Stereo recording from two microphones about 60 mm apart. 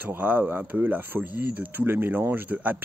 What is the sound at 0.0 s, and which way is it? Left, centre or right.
Speech, right.